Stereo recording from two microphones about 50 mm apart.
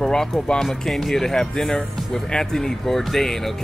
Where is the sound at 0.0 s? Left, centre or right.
Centre.